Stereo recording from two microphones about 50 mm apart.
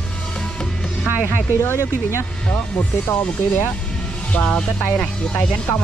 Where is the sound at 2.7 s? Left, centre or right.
Left.